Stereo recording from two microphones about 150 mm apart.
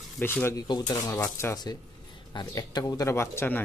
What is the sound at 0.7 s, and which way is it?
Speech, 25° left (ahead or behind).